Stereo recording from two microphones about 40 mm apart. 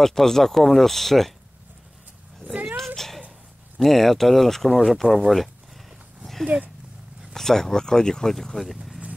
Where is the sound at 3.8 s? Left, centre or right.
Centre.